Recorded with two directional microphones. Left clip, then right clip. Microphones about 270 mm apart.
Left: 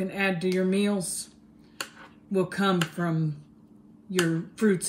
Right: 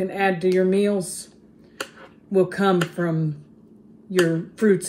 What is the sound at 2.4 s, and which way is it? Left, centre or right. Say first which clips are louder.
Speech: right 6 dB; centre.